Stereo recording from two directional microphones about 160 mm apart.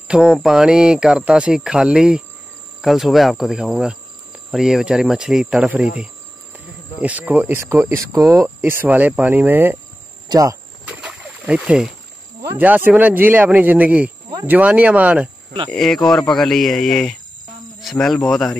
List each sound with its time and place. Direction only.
0.1 s speech: 5° right (ahead or behind)
7.0 s speech: 10° right (ahead or behind)
10.9 s rowboat: 5° right (ahead or behind)
12.4 s speech: 15° right (ahead or behind)
15.7 s speech: 5° left (ahead or behind)